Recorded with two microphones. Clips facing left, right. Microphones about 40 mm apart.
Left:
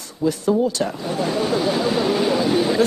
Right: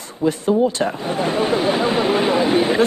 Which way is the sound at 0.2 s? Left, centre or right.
Right.